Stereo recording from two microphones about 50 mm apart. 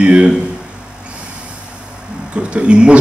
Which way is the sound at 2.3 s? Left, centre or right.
Right.